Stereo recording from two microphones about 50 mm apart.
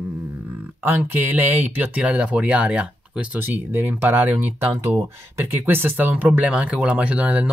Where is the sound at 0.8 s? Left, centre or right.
Right.